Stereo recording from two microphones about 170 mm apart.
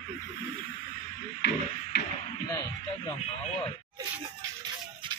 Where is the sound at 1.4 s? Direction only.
75° left (ahead or behind).